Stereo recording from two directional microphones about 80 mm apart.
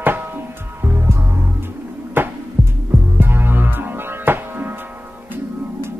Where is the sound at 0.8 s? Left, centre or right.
Right.